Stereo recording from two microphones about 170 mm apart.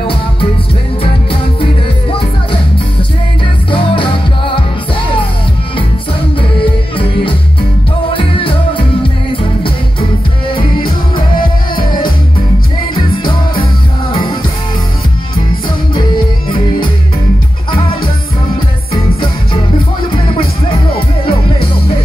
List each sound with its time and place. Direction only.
3.7 s music: 30° left (ahead or behind)
6.6 s music: 30° left (ahead or behind)
12.9 s music: 25° left (ahead or behind)
20.3 s music: 30° left (ahead or behind)